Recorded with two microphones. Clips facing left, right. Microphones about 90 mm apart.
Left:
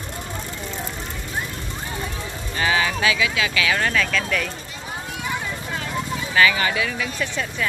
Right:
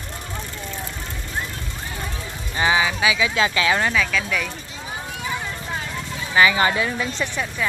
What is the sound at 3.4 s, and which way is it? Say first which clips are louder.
Speech: right 3 dB; 30° right (ahead or behind).